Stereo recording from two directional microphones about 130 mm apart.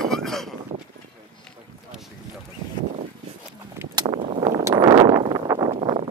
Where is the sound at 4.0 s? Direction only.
45° right (ahead or behind).